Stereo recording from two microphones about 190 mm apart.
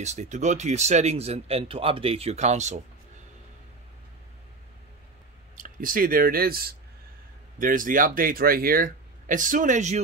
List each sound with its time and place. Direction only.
0.0 s speech: 35° right (ahead or behind)
5.6 s speech: 45° right (ahead or behind)